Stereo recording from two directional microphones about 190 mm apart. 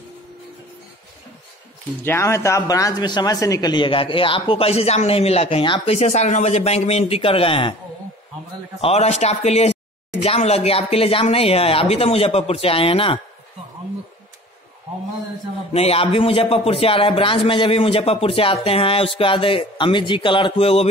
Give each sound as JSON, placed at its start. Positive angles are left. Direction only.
{"t": 2.0, "sound": "speech", "side_deg": 15}
{"t": 8.8, "sound": "speech", "side_deg": 35}
{"t": 15.7, "sound": "a man's voice", "side_deg": 30}